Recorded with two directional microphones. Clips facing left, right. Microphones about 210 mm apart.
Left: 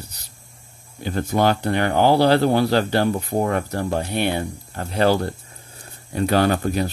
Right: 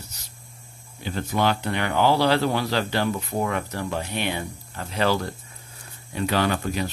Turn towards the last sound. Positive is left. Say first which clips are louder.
# left 5 dB
turn(degrees=40)  # may be behind; listen again after turning